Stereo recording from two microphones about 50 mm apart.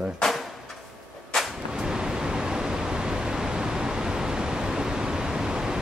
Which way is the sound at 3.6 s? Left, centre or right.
Centre.